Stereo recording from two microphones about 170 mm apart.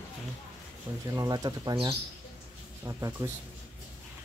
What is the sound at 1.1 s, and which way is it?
Speech, 20° right (ahead or behind).